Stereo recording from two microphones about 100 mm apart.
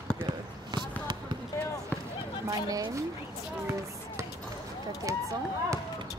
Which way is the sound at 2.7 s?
35° right (ahead or behind).